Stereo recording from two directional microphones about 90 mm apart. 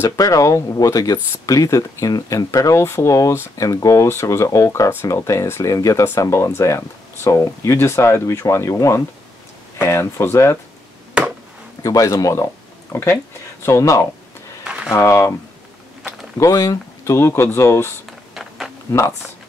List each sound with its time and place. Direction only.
0.0 s speech: 35° left (ahead or behind)
11.2 s chop: 10° right (ahead or behind)
11.8 s speech: 40° left (ahead or behind)
12.9 s speech: 30° left (ahead or behind)
16.3 s speech: 35° left (ahead or behind)
18.3 s a sound: 5° right (ahead or behind)
18.9 s speech: 35° left (ahead or behind)